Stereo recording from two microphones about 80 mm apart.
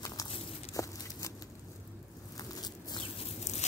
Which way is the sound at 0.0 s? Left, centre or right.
Left.